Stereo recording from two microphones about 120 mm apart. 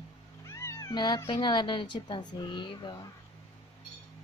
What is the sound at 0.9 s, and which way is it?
Speech, 40° left (ahead or behind).